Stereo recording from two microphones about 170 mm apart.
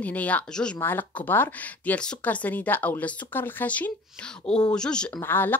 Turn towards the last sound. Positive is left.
turn(degrees=15)  # may be behind; listen again after turning